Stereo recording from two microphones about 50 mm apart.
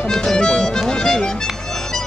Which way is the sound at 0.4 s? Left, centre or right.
Centre.